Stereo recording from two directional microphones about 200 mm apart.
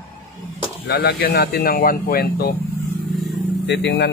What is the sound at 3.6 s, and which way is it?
Speech, 60° left (ahead or behind).